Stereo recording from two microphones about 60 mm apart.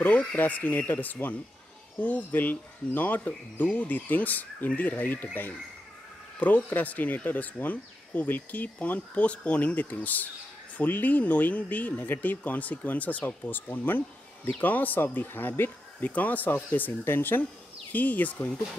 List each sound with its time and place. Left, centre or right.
0.0 s speech: left